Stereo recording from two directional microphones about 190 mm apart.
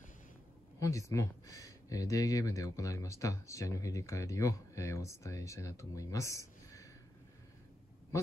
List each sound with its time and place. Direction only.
0.7 s speech: 15° left (ahead or behind)